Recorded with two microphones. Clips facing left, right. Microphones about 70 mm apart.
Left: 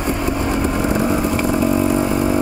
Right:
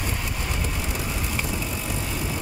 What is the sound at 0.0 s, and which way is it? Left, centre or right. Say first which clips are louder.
Vehicle: left 11 dB; left.